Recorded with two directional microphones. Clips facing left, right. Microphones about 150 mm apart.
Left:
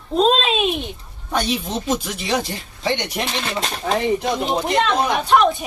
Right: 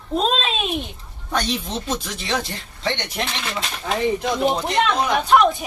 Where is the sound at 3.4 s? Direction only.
35° left (ahead or behind).